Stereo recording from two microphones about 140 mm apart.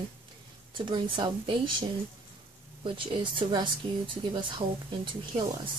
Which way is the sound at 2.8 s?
40° right (ahead or behind).